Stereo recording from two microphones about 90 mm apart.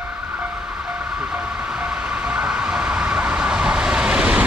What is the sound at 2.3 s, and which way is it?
Vehicle, 10° right (ahead or behind).